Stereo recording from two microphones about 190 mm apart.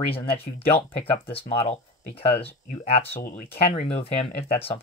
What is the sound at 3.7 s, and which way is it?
Speech, 30° left (ahead or behind).